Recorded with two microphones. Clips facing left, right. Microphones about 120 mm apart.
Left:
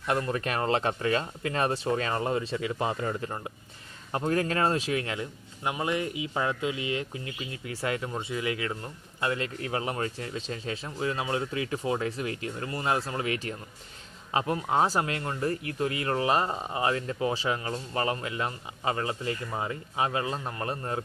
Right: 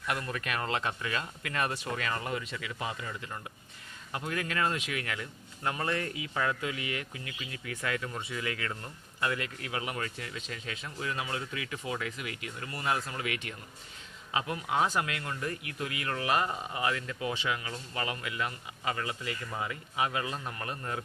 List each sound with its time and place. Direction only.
0.0 s speech: 30° left (ahead or behind)